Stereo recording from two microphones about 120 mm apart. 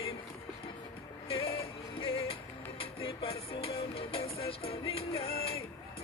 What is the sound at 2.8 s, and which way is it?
Music, 50° left (ahead or behind).